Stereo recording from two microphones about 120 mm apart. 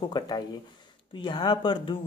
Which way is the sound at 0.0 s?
35° left (ahead or behind).